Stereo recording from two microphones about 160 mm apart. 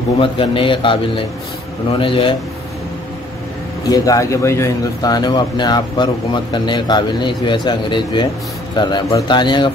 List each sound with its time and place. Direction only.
0.2 s a man's voice: 30° left (ahead or behind)
3.8 s a man's voice: 20° left (ahead or behind)